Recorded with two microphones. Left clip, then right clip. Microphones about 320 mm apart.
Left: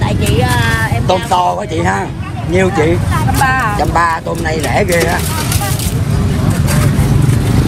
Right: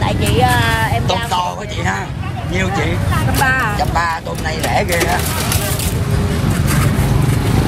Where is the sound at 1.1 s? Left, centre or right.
Centre.